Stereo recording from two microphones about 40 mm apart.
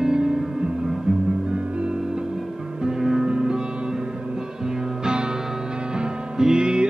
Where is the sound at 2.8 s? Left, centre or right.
Centre.